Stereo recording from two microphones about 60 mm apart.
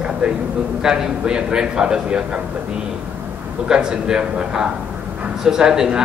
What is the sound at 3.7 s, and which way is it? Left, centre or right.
A man's voice, centre.